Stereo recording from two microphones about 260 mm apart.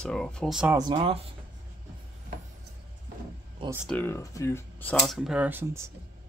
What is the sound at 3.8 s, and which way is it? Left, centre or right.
Speech, centre.